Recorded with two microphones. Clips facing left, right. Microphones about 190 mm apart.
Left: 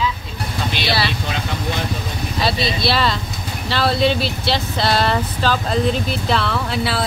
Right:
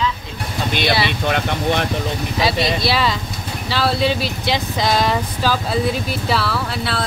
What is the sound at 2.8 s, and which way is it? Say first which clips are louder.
Speech: even; 10° right (ahead or behind).